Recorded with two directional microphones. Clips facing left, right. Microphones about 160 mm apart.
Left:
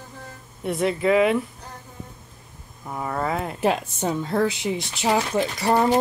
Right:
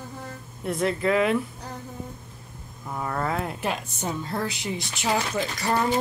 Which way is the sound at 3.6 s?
30° left (ahead or behind).